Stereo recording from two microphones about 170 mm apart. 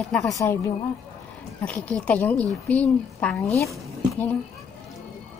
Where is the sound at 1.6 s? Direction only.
10° left (ahead or behind).